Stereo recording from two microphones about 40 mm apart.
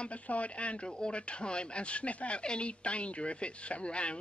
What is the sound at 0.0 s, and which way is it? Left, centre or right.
Speech, left.